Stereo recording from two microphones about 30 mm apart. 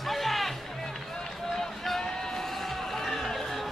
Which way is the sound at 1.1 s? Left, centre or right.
Centre.